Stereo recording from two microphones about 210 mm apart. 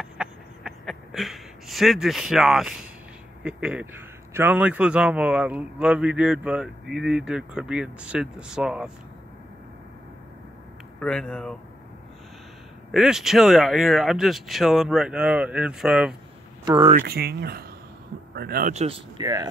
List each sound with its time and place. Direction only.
0.0 s a sound: 5° right (ahead or behind)
3.4 s a man's voice: 5° right (ahead or behind)
11.0 s a man's voice: 5° left (ahead or behind)
12.9 s a man's voice: centre (ahead or behind)
16.6 s speech: 25° right (ahead or behind)
17.0 s speech: 45° right (ahead or behind); by 19.4 s 20° right (ahead or behind)